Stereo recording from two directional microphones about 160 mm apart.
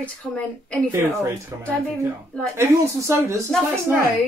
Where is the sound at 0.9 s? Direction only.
15° right (ahead or behind).